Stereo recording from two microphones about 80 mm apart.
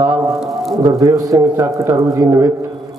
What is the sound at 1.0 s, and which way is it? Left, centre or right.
Speech, right.